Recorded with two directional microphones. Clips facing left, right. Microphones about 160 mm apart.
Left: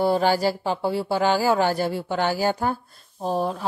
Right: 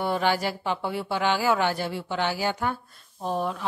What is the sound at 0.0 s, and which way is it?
Speech, 35° left (ahead or behind).